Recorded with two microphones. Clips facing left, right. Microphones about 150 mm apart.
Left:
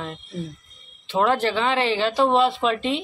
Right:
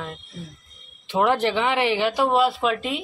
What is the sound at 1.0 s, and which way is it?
A man's voice, 15° right (ahead or behind).